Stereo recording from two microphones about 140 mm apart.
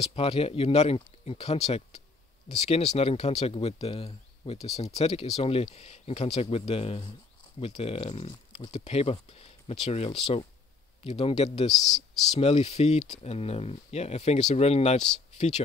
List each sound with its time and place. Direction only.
0.0 s speech: 45° left (ahead or behind)